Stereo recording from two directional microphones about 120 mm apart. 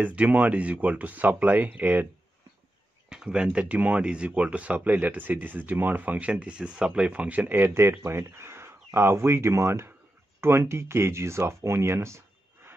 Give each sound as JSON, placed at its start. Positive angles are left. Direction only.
{"t": 0.0, "sound": "speech", "side_deg": -10}
{"t": 3.1, "sound": "speech", "side_deg": -5}